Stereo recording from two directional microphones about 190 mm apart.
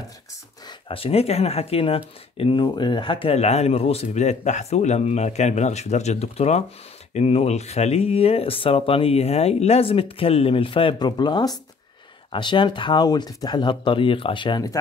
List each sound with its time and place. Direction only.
0.7 s speech: 30° left (ahead or behind)